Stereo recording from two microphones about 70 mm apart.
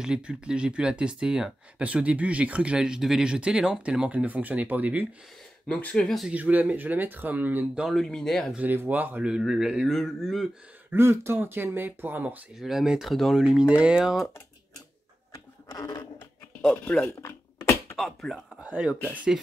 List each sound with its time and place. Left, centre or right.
0.0 s speech: centre
5.7 s speech: centre
6.3 s speech: right
7.9 s speech: centre
8.5 s speech: right
9.4 s speech: centre
10.9 s speech: right
12.5 s speech: centre
13.4 s speech: centre
15.3 s a sound: left
17.0 s a sound: left
17.9 s speech: centre
18.6 s speech: centre